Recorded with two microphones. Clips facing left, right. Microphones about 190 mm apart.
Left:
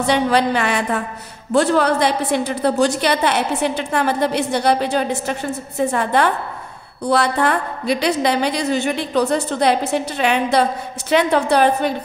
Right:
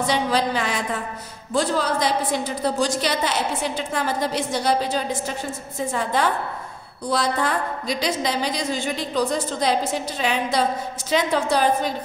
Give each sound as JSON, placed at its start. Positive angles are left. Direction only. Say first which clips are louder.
{"t": 0.0, "sound": "a woman's voice", "louder": "left 5 dB", "side_deg": 65}